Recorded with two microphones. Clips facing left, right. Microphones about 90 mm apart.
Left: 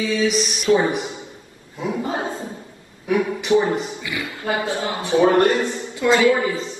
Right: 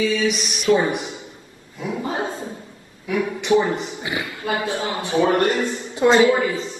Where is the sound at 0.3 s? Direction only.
35° left (ahead or behind).